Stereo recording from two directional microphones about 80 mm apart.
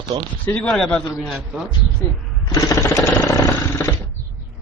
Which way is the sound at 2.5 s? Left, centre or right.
Left.